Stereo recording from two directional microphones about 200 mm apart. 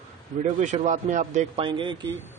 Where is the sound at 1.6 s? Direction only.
25° right (ahead or behind).